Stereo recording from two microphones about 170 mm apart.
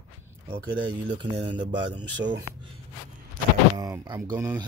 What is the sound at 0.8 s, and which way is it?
Speech, 30° right (ahead or behind).